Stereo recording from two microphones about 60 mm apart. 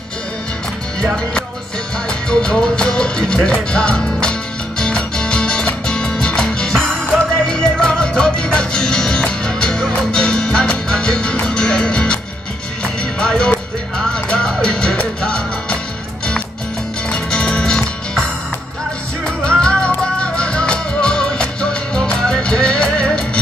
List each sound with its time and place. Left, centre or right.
2.0 s music: centre
17.1 s music: centre
19.6 s music: centre